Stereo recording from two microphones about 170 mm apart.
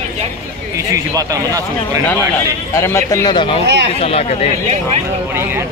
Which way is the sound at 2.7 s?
15° left (ahead or behind).